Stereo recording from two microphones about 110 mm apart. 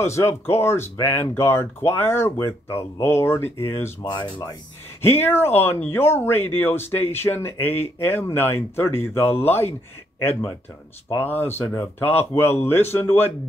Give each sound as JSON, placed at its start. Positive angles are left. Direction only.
{"t": 0.0, "sound": "speech", "side_deg": 25}
{"t": 4.0, "sound": "speech", "side_deg": 45}
{"t": 5.2, "sound": "speech", "side_deg": 20}
{"t": 11.1, "sound": "speech", "side_deg": 20}